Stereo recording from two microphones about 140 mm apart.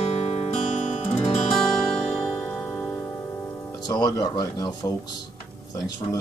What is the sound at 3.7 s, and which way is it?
Speech, 25° left (ahead or behind).